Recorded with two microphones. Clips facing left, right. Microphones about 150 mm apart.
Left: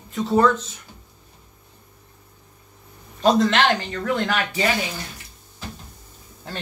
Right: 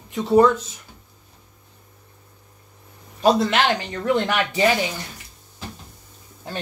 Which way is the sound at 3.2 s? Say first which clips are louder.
Even; 10° right (ahead or behind).